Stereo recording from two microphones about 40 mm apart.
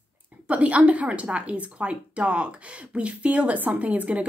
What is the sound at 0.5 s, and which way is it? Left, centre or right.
Speech, right.